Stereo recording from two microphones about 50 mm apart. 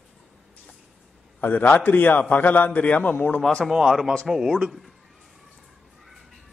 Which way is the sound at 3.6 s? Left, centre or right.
Centre.